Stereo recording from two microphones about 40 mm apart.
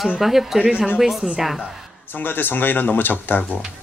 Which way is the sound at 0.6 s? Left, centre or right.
Right.